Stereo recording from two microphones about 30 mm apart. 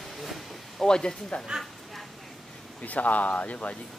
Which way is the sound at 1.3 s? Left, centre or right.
Left.